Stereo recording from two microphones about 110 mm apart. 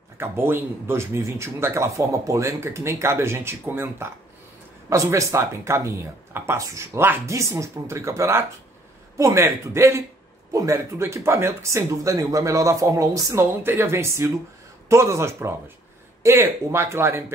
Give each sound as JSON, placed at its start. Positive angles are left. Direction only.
{"t": 0.2, "sound": "a man's voice", "side_deg": -20}